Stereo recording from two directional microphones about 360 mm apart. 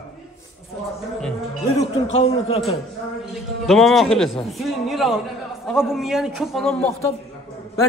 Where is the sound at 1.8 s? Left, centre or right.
Centre.